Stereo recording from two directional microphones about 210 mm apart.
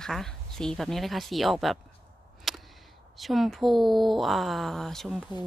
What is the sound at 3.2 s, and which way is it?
A woman's voice, centre (ahead or behind).